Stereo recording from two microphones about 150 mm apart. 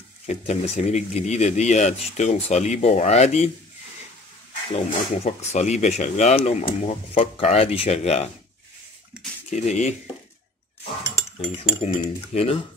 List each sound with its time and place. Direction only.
0.3 s speech: 50° left (ahead or behind)
4.7 s speech: 45° left (ahead or behind)
9.5 s speech: 50° left (ahead or behind)
11.8 s speech: 40° left (ahead or behind)